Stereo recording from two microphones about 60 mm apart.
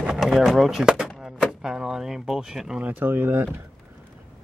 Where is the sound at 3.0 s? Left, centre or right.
Right.